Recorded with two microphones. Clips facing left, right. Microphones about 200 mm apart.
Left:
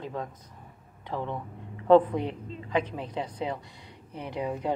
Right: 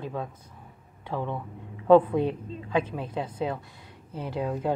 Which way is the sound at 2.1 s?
20° left (ahead or behind).